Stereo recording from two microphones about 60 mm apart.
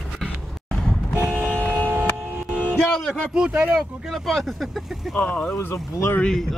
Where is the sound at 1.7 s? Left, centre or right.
Right.